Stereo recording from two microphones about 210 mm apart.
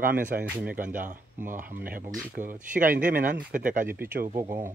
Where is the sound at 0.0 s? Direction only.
40° right (ahead or behind).